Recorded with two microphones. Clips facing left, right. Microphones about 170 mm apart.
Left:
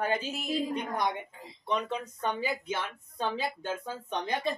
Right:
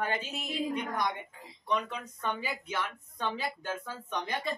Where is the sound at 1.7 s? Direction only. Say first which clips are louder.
Left 1 dB; 25° left (ahead or behind).